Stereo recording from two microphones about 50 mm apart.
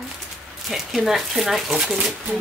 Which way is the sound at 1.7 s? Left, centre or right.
Centre.